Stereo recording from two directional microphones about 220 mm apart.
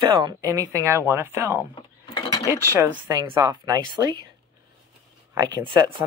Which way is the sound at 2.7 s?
15° right (ahead or behind).